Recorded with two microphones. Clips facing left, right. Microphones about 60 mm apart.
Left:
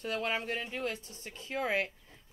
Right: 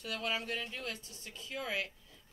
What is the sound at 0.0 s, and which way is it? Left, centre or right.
Speech, left.